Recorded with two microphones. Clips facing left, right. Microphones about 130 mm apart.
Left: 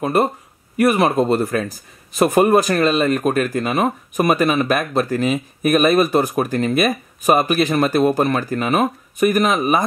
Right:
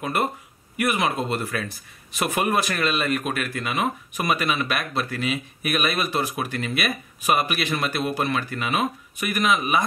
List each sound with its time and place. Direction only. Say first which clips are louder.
0.0 s speech: left 7 dB; 35° left (ahead or behind)